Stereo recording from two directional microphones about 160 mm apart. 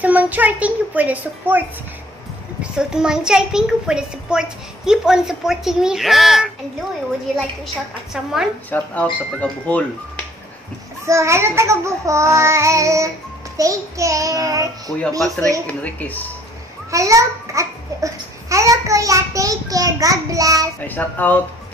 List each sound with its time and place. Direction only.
0.0 s child singing: 10° right (ahead or behind)
2.6 s a child's voice: 5° right (ahead or behind)
8.6 s speech: 10° left (ahead or behind)
11.1 s child singing: 20° right (ahead or behind)
15.0 s a child's voice: 5° left (ahead or behind)
16.9 s a child's voice: 20° right (ahead or behind)
20.8 s speech: 10° left (ahead or behind)